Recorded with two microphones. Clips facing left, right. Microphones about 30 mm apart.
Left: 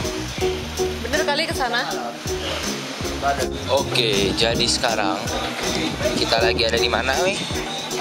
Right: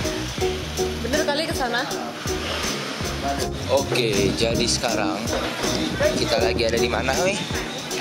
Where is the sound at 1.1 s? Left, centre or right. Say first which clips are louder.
Left 1 dB; centre.